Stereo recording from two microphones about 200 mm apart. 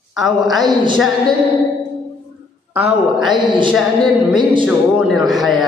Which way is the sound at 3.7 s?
Centre (ahead or behind).